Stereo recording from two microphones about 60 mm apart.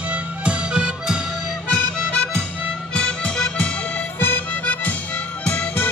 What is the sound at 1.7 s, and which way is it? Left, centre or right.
Music, centre.